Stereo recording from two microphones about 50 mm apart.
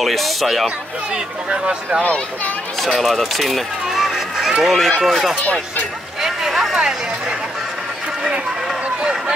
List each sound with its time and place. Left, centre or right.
0.0 s speech: centre
0.7 s speech: centre
2.0 s a child's voice: left
2.8 s speech: centre
4.6 s speech: centre
5.4 s speech: left
6.2 s a sound: centre
6.8 s speech: centre